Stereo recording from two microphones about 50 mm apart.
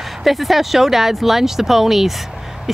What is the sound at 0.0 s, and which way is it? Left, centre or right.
Speech, centre.